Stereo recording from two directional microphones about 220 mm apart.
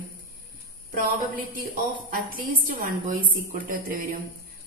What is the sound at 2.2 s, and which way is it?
A woman's voice, 40° right (ahead or behind).